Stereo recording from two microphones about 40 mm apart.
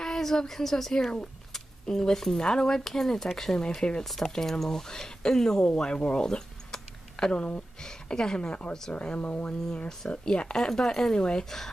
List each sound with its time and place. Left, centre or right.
0.0 s a woman's voice: centre
3.6 s a woman's voice: left
4.0 s speech: centre
5.7 s a sound: left
7.8 s a woman's voice: centre
8.9 s speech: left
9.8 s a woman's voice: left
10.5 s speech: centre
11.1 s a woman's voice: left